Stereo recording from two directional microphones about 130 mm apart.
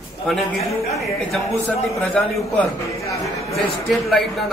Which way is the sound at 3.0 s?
25° left (ahead or behind).